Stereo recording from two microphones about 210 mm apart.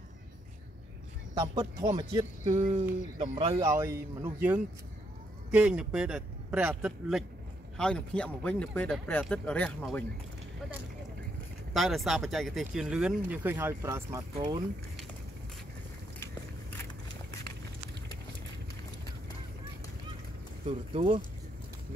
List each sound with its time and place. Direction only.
1.3 s speech: 20° right (ahead or behind)
2.4 s speech: 35° right (ahead or behind); by 10.0 s 5° left (ahead or behind)
11.7 s speech: centre (ahead or behind); by 14.6 s 20° right (ahead or behind)
20.6 s speech: 25° right (ahead or behind)